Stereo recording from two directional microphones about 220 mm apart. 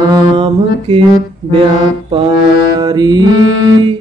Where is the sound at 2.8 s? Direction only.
20° right (ahead or behind).